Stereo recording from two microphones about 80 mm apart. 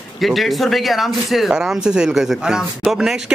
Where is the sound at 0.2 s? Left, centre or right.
Centre.